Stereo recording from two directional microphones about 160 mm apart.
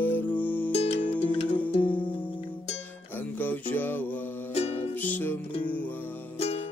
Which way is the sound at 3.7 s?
10° left (ahead or behind).